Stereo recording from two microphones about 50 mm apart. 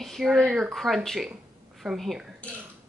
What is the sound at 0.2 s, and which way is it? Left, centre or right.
A woman's voice, centre.